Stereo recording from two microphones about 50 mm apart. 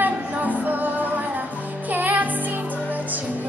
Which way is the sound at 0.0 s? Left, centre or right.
Right.